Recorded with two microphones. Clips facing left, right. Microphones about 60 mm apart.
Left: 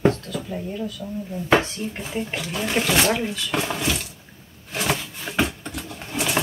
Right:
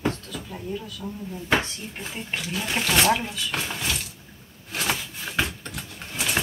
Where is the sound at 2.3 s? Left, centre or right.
Centre.